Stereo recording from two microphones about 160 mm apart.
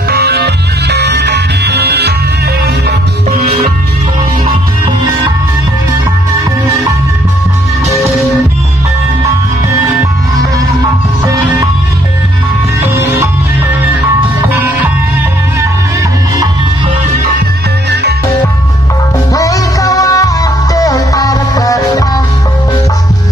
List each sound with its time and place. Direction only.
0.1 s music: 80° right
3.3 s music: 50° right (ahead or behind)
19.3 s music: 20° left (ahead or behind)